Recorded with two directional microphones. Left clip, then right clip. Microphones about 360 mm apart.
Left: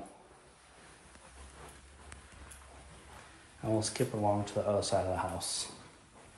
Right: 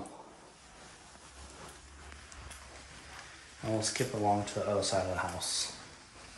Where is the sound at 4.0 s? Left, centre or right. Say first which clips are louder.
Right 3 dB; centre.